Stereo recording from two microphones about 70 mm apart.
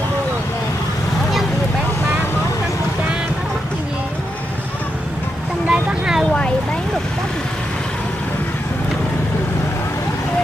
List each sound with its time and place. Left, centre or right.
5.7 s vehicle: centre